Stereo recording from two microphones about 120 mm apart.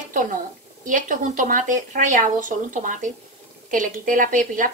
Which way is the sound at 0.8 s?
90° right.